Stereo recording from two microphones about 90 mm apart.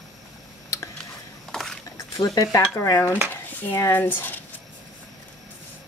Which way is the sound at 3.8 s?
25° left (ahead or behind).